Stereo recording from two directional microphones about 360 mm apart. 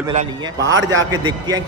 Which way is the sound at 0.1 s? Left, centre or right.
Centre.